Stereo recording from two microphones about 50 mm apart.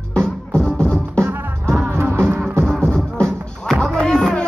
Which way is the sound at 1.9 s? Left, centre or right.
Right.